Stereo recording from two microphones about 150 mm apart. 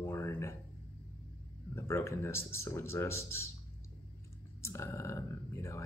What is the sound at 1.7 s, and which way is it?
Speech, 15° left (ahead or behind).